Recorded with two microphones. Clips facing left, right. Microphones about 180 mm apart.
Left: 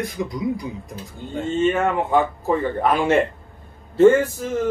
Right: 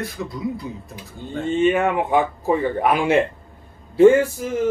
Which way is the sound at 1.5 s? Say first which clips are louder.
Right 2 dB; 15° right (ahead or behind).